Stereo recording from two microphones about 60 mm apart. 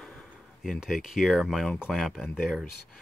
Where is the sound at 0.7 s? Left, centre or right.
Centre.